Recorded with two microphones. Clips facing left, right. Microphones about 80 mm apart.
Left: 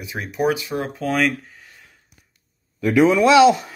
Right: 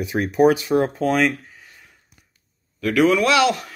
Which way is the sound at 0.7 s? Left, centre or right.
Right.